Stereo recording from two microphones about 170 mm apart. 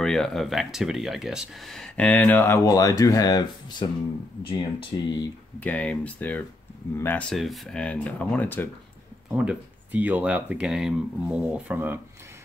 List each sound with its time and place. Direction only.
0.0 s speech: centre (ahead or behind); by 5.3 s 25° left (ahead or behind)
5.6 s speech: 5° left (ahead or behind)
9.3 s speech: 10° right (ahead or behind)